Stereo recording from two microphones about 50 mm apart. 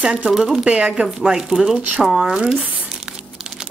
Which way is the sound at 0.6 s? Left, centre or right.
Right.